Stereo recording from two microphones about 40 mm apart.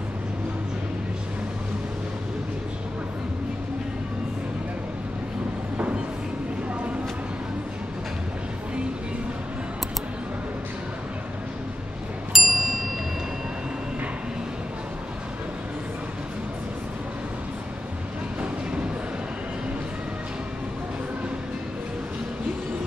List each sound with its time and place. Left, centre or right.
12.3 s ding: centre